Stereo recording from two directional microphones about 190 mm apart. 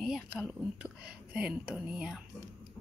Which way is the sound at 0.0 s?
Centre (ahead or behind).